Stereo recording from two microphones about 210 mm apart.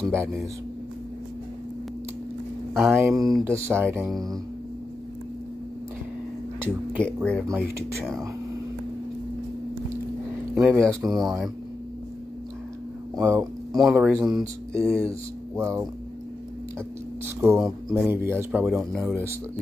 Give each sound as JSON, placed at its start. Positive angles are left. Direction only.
{"t": 0.0, "sound": "speech", "side_deg": -10}
{"t": 2.7, "sound": "speech", "side_deg": -5}
{"t": 7.0, "sound": "speech", "side_deg": 5}
{"t": 10.5, "sound": "speech", "side_deg": -10}
{"t": 11.1, "sound": "speech", "side_deg": 0}
{"t": 13.2, "sound": "speech", "side_deg": -15}
{"t": 17.4, "sound": "speech", "side_deg": -10}